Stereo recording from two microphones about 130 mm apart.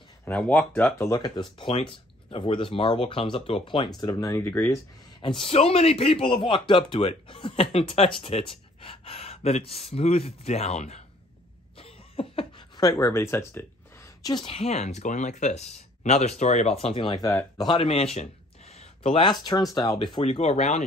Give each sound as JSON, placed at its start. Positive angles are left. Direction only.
{"t": 0.2, "sound": "speech", "side_deg": 10}
{"t": 1.0, "sound": "speech", "side_deg": 30}
{"t": 4.0, "sound": "speech", "side_deg": 30}
{"t": 5.2, "sound": "speech", "side_deg": 40}
{"t": 11.8, "sound": "a sound", "side_deg": 45}
{"t": 12.7, "sound": "speech", "side_deg": 30}
{"t": 14.4, "sound": "speech", "side_deg": 50}
{"t": 17.8, "sound": "speech", "side_deg": 50}
{"t": 18.7, "sound": "a sound", "side_deg": 55}
{"t": 19.1, "sound": "speech", "side_deg": 35}
{"t": 20.2, "sound": "speech", "side_deg": 55}